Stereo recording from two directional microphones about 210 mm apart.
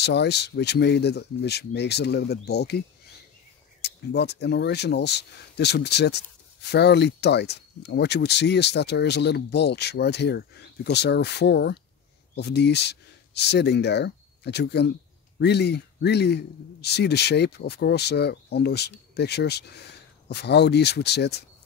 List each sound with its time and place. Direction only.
0.0 s a man's voice: 55° left (ahead or behind)